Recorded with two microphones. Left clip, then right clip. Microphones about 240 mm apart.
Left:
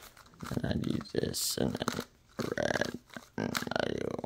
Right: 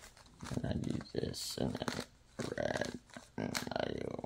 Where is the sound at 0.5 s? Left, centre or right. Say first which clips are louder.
Left 5 dB; left.